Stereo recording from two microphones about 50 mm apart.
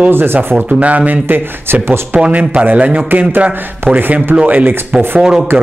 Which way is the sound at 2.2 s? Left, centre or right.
Right.